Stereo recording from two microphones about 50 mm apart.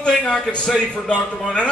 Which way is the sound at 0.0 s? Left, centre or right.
Centre.